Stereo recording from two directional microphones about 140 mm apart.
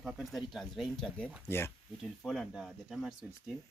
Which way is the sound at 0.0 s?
Centre (ahead or behind).